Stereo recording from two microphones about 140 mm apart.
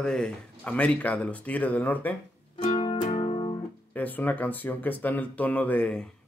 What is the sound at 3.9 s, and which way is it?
Speech, 10° left (ahead or behind).